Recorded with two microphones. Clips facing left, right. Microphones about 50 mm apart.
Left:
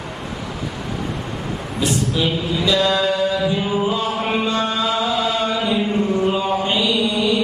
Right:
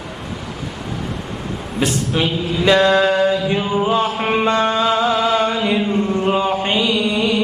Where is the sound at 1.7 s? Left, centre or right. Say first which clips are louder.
Right 2 dB; right.